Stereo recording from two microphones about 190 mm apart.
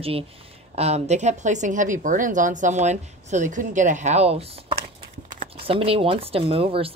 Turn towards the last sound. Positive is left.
turn(degrees=-30)  # may be behind; listen again after turning